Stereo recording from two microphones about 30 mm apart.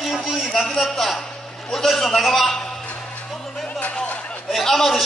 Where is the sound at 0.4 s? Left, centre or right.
Centre.